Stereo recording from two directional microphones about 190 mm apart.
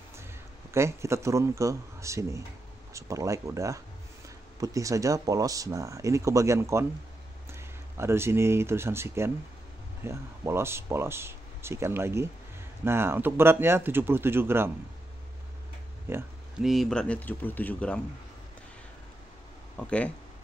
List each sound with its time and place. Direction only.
0.7 s speech: 15° right (ahead or behind)
16.1 s a sound: 10° right (ahead or behind)
16.6 s speech: centre (ahead or behind)
19.8 s speech: 5° left (ahead or behind)